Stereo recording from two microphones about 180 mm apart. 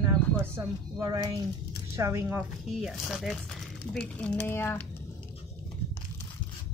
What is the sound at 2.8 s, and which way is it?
Speech, centre (ahead or behind).